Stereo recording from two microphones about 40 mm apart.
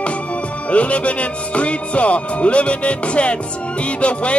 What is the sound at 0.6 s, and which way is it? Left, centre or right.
Music, left.